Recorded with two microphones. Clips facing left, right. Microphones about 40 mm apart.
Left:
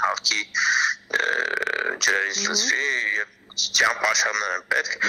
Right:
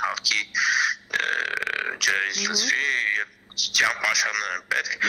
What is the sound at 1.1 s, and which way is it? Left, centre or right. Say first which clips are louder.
Burping: left 3 dB; right.